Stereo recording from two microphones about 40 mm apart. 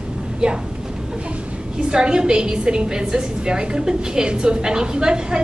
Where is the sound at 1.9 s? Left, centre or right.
Right.